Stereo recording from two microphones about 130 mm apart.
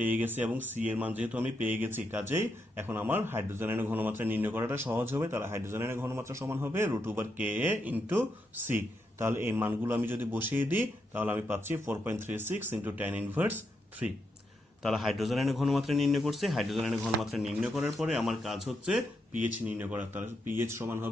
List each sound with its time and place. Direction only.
0.0 s speech: 15° right (ahead or behind)
14.8 s speech: centre (ahead or behind)
19.4 s speech: 15° right (ahead or behind)